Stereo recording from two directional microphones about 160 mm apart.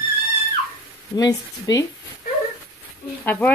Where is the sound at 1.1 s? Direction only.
25° left (ahead or behind).